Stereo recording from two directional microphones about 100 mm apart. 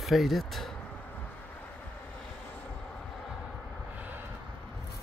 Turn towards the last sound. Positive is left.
turn(degrees=-15)  # may be behind; listen again after turning